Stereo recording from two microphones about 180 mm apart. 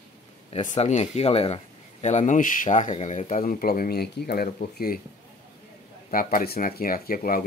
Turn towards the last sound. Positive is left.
turn(degrees=50)  # may be behind; listen again after turning